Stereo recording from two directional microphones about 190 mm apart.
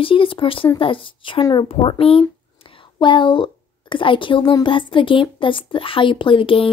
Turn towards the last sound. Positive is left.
turn(degrees=25)  # may be behind; listen again after turning